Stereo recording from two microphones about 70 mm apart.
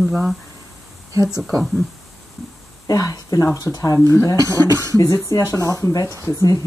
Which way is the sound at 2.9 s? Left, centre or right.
Left.